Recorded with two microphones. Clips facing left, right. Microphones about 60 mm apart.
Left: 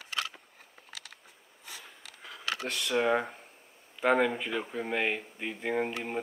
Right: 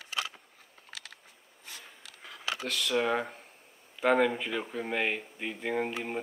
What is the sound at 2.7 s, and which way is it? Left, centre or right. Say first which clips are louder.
Speech: left 1 dB; centre.